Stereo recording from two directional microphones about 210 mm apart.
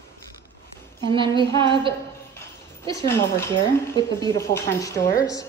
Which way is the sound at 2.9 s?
15° left (ahead or behind).